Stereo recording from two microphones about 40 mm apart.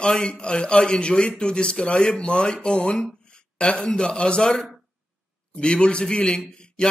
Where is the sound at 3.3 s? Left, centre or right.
Left.